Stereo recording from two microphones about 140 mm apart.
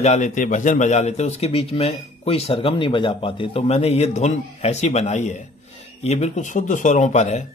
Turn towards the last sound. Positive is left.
turn(degrees=55)  # may be behind; listen again after turning